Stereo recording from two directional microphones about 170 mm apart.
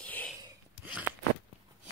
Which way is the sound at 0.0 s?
10° left (ahead or behind).